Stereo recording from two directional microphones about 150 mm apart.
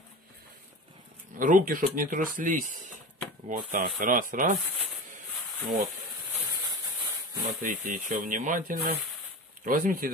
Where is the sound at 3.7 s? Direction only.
65° right (ahead or behind).